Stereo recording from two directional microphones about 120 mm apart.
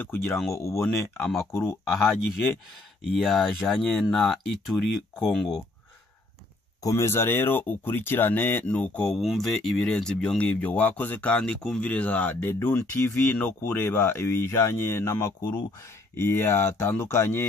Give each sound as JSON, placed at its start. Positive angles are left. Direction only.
{"t": 0.0, "sound": "speech", "side_deg": 15}
{"t": 3.0, "sound": "speech", "side_deg": 0}
{"t": 6.8, "sound": "speech", "side_deg": 25}